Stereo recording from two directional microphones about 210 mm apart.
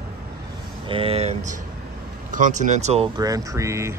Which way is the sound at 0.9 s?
25° right (ahead or behind).